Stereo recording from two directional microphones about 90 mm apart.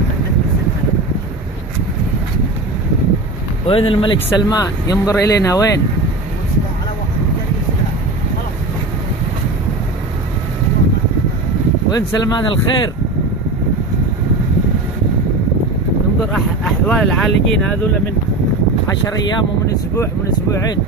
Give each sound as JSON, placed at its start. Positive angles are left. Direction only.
{"t": 3.6, "sound": "speech", "side_deg": 85}
{"t": 11.9, "sound": "speech", "side_deg": 50}
{"t": 16.8, "sound": "speech", "side_deg": 10}